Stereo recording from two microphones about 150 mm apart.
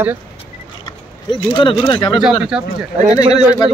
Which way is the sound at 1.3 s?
30° left (ahead or behind).